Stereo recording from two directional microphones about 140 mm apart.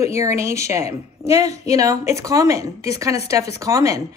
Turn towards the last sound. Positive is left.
turn(degrees=-20)  # may be behind; listen again after turning